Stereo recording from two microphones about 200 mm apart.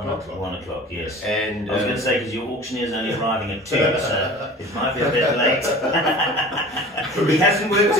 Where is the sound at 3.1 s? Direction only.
15° right (ahead or behind).